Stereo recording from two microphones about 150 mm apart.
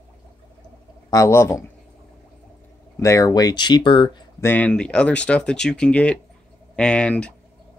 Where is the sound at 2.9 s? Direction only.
20° left (ahead or behind).